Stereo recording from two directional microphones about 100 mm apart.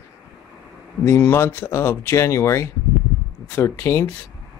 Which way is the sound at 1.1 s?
25° left (ahead or behind).